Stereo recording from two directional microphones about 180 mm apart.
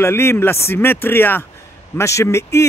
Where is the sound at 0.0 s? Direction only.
15° left (ahead or behind).